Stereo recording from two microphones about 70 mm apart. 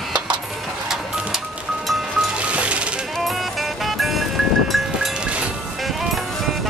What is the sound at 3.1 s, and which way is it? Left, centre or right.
Music, centre.